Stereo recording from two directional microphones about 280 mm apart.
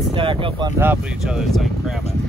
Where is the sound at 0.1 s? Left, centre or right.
Centre.